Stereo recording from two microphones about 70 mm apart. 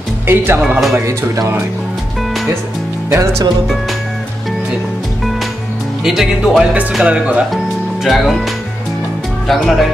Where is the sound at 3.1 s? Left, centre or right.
Right.